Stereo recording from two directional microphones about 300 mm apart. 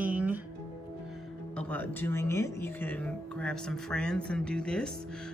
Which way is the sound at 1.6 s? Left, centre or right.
Centre.